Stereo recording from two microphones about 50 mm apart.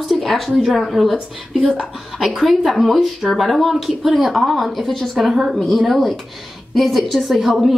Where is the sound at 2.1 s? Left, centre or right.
Centre.